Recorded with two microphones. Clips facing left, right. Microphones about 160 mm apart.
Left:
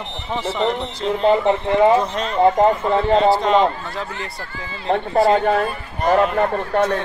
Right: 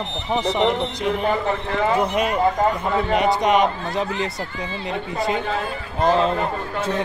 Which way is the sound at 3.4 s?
15° right (ahead or behind).